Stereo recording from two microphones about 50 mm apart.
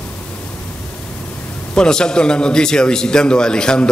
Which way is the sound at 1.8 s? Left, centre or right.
Centre.